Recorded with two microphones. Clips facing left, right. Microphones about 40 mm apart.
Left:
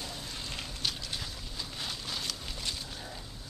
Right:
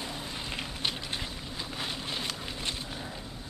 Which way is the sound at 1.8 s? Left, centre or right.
Right.